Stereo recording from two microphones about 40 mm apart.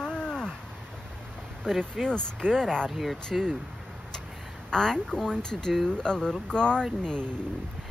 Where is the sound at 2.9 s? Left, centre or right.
Centre.